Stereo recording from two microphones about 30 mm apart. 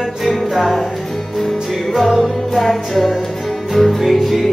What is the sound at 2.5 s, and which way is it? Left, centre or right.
Music, centre.